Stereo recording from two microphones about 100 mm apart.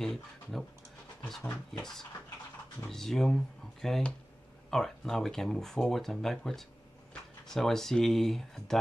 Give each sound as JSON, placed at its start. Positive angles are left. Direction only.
{"t": 0.0, "sound": "speech", "side_deg": 5}